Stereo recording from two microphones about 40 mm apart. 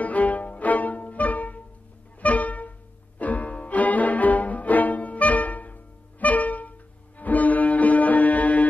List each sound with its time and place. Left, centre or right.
0.0 s music: left